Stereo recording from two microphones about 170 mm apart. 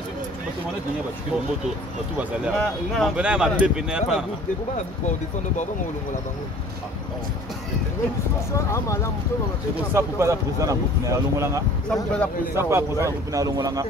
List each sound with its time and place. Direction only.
2.5 s speech: 5° left (ahead or behind)
8.5 s speech: 15° left (ahead or behind)
9.9 s speech: 15° right (ahead or behind)
11.9 s speech: 5° left (ahead or behind)
12.5 s speech: 15° right (ahead or behind)